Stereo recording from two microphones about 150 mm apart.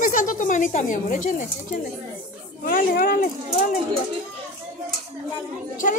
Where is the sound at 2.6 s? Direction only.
70° left (ahead or behind).